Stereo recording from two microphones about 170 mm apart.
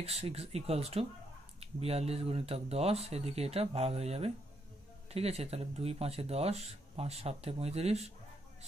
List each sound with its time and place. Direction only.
0.0 s speech: 35° right (ahead or behind)